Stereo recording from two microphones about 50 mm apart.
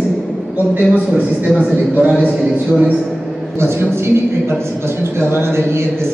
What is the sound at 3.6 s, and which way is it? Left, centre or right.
A man's voice, right.